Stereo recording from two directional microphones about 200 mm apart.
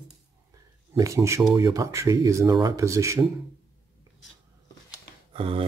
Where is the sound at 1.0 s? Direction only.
15° right (ahead or behind).